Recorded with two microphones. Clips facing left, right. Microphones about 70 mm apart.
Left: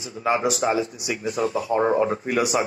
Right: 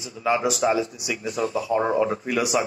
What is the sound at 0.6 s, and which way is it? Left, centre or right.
Speech, left.